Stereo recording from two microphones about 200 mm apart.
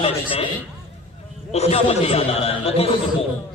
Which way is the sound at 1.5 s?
30° left (ahead or behind).